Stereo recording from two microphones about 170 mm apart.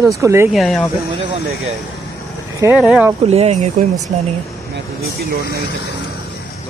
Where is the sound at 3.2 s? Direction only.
40° right (ahead or behind).